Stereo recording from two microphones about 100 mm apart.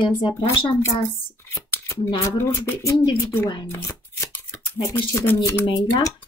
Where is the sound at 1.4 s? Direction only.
30° left (ahead or behind).